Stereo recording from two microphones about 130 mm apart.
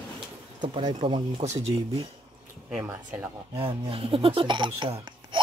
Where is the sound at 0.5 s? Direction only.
35° right (ahead or behind).